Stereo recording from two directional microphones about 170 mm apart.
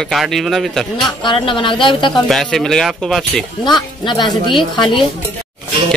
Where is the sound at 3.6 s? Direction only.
25° left (ahead or behind).